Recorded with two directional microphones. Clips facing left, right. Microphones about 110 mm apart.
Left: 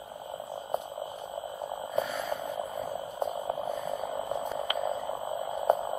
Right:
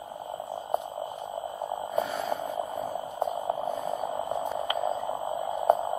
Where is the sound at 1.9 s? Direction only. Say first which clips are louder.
Right 2 dB; 25° right (ahead or behind).